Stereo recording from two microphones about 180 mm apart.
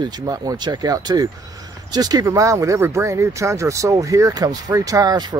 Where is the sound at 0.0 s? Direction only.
20° right (ahead or behind).